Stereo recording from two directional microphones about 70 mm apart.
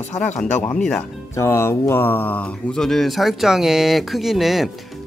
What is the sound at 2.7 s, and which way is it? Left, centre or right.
Speech, centre.